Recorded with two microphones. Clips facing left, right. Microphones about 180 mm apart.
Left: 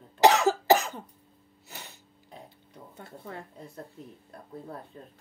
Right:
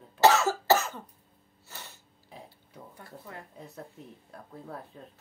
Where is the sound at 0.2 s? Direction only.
15° left (ahead or behind).